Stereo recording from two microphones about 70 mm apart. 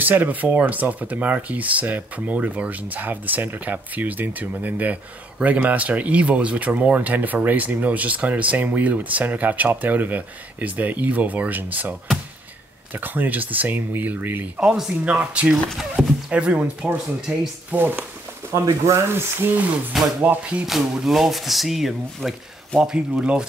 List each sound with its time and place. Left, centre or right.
0.0 s speech: right
12.9 s speech: right
15.8 s speech: centre
16.3 s speech: centre
17.6 s speech: right
18.5 s speech: right
19.1 s speech: right
20.2 s speech: centre
20.6 s speech: centre